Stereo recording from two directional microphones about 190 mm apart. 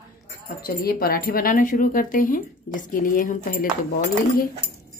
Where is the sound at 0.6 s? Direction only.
50° left (ahead or behind).